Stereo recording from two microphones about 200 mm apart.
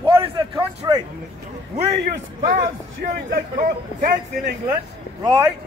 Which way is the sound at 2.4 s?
45° right (ahead or behind).